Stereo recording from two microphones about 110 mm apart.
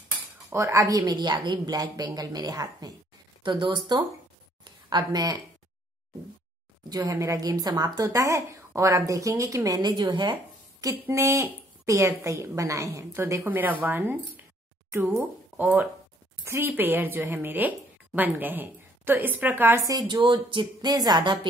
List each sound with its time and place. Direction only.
0.5 s a woman's voice: 25° right (ahead or behind)
6.9 s a woman's voice: 30° right (ahead or behind)
10.8 s a woman's voice: 30° right (ahead or behind)
19.8 s a woman's voice: 35° right (ahead or behind)
20.2 s speech: 50° right (ahead or behind)